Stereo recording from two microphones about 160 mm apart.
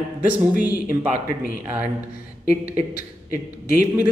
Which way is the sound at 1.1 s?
60° left (ahead or behind).